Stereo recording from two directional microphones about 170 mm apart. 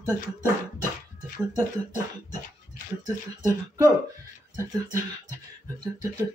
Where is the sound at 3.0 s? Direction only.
20° right (ahead or behind).